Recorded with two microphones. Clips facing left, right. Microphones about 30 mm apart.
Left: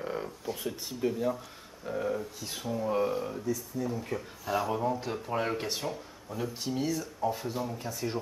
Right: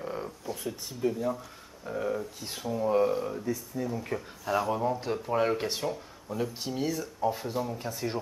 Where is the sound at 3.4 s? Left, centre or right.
Right.